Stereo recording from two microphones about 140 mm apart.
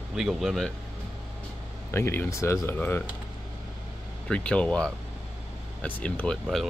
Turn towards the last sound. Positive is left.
turn(degrees=5)  # may be behind; listen again after turning